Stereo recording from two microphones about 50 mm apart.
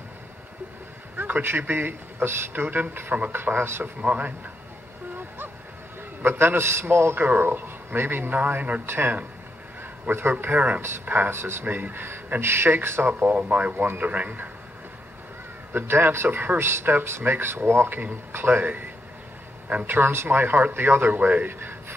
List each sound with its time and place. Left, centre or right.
1.1 s a sound: right
1.4 s speech: right
3.6 s a man's voice: right
4.0 s a man's voice: right
6.2 s a man's voice: right
7.2 s speech: right
10.4 s speech: right
11.2 s a man's voice: right
11.6 s speech: right
13.0 s speech: right
15.7 s speech: right
16.5 s a man's voice: right
19.9 s speech: right
21.5 s a sound: right